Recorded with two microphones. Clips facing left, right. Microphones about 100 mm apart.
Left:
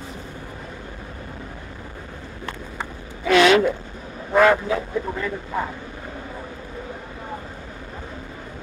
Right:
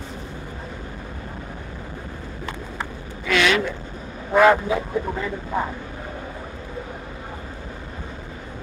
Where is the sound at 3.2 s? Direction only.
35° left (ahead or behind).